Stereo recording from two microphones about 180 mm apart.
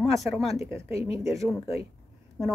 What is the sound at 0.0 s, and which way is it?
Speech, centre (ahead or behind).